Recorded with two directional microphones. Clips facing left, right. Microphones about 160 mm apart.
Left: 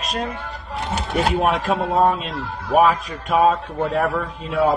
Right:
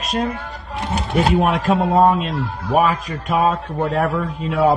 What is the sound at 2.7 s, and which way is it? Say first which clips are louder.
Speech: left 1 dB; 50° right (ahead or behind).